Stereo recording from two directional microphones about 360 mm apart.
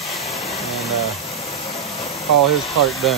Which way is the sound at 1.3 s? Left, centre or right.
Centre.